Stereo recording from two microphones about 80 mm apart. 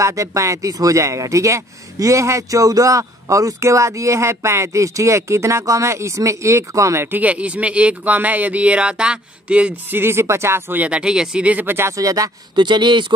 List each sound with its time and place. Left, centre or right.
0.0 s speech: right
7.2 s speech: centre
9.8 s speech: right
10.8 s speech: centre
11.9 s speech: right
12.5 s speech: right